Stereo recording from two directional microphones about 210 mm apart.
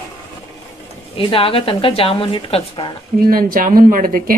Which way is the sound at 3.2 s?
45° right (ahead or behind).